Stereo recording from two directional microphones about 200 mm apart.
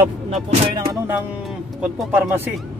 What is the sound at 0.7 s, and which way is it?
Speech, 15° right (ahead or behind).